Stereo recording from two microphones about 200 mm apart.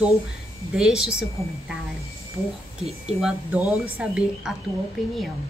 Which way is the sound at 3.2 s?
Centre (ahead or behind).